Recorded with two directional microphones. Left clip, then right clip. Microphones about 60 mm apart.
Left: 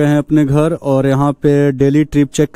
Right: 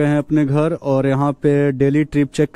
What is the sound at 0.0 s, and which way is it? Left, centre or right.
Speech, left.